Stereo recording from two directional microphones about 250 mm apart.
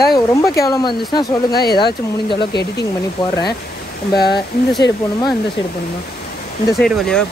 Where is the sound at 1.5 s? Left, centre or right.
Left.